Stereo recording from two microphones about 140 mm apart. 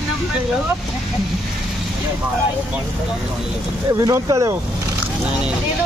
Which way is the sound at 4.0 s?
25° right (ahead or behind).